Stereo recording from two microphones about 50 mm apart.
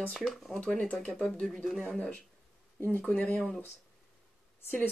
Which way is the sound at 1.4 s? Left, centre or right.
Centre.